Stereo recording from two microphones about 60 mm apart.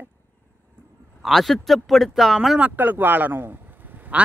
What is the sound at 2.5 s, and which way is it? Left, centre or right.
Speech, right.